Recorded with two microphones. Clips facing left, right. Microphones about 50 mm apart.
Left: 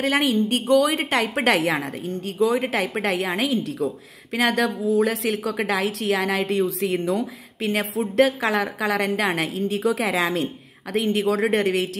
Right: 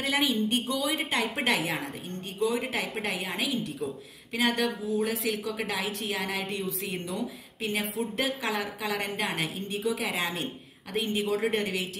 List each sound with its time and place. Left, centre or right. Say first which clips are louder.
0.1 s a woman's voice: left 2 dB; left